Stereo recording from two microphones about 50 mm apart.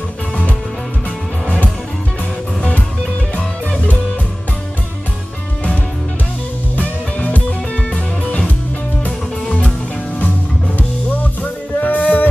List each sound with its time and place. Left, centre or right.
6.8 s music: left
11.8 s music: left